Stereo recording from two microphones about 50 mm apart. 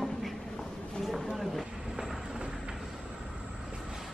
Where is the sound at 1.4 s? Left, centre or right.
Centre.